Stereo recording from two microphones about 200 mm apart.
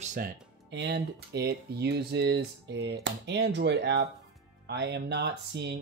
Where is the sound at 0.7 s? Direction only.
60° right (ahead or behind).